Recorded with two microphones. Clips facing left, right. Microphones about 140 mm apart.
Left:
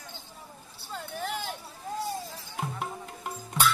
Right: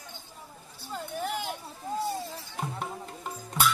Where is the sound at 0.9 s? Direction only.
10° right (ahead or behind).